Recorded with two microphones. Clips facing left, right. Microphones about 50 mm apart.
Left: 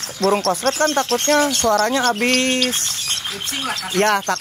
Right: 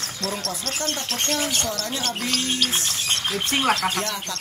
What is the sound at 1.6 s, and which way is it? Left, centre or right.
Speech, left.